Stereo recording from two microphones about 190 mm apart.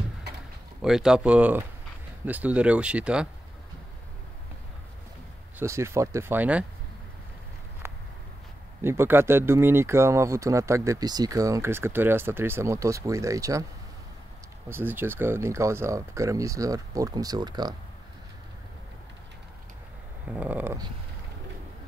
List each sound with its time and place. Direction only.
0.8 s speech: 5° right (ahead or behind)
5.6 s speech: 15° right (ahead or behind)
8.8 s speech: 10° right (ahead or behind)
14.7 s speech: 10° right (ahead or behind)
20.2 s speech: 10° right (ahead or behind)